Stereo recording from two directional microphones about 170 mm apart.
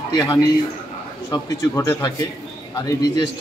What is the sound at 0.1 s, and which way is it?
A man's voice, 25° left (ahead or behind).